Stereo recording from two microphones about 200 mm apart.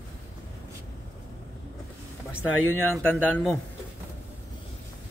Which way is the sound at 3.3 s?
Centre (ahead or behind).